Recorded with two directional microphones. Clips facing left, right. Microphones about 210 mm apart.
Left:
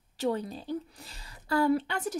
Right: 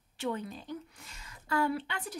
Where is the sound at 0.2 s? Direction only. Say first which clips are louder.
Left 5 dB; 35° left (ahead or behind).